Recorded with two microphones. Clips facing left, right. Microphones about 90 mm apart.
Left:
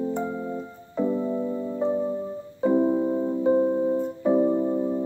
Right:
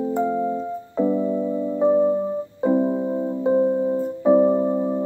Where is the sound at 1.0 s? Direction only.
10° right (ahead or behind).